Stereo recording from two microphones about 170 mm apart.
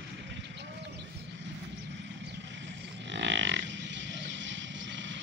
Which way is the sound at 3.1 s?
90° right.